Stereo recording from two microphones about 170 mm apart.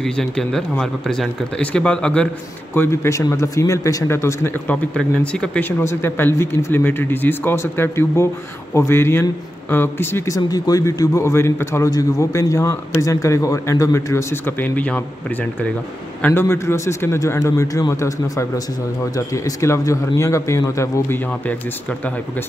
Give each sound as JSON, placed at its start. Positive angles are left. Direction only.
{"t": 0.0, "sound": "a man's voice", "side_deg": 5}